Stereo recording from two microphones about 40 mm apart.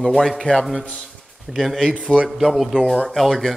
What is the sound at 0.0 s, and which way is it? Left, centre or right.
Speech, centre.